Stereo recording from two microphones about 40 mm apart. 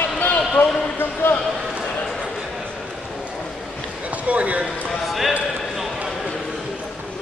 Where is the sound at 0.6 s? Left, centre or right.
Left.